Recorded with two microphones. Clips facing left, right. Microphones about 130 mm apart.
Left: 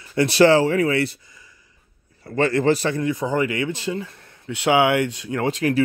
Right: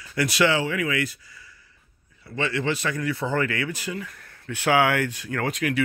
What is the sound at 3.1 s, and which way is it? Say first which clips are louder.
Speech: left 3 dB; 15° left (ahead or behind).